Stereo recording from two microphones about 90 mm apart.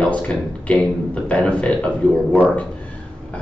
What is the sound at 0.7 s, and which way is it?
Speech, 10° left (ahead or behind).